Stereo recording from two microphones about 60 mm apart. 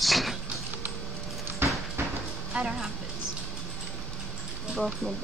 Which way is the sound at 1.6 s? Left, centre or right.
Right.